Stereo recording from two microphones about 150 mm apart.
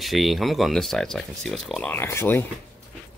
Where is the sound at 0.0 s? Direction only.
Centre (ahead or behind); by 2.4 s 15° left (ahead or behind).